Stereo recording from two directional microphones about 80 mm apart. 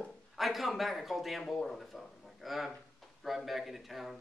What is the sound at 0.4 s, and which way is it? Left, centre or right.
Speech, centre.